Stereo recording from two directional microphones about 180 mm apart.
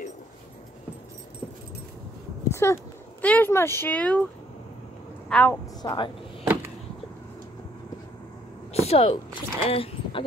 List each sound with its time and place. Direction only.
2.5 s speech: 15° left (ahead or behind)
5.3 s a woman's voice: 10° left (ahead or behind)
5.8 s speech: 25° left (ahead or behind)
8.7 s speech: 35° left (ahead or behind)